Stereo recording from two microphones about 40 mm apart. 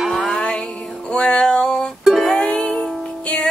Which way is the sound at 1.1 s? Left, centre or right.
Left.